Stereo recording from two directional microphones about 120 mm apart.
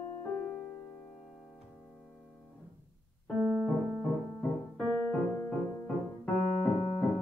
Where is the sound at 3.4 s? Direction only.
15° right (ahead or behind).